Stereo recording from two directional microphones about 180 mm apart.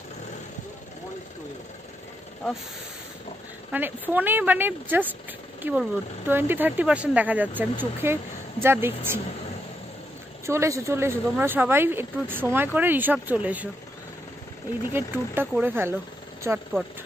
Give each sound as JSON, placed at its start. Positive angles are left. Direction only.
{"t": 3.7, "sound": "speech", "side_deg": -10}
{"t": 10.4, "sound": "speech", "side_deg": -15}
{"t": 14.9, "sound": "speech", "side_deg": -10}